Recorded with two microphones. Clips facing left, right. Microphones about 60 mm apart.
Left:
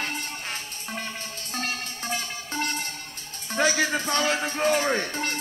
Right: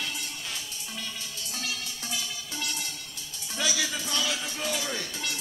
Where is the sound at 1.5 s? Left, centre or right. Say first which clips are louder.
Left 6 dB; left.